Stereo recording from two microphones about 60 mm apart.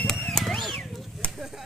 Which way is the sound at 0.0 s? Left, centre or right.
Centre.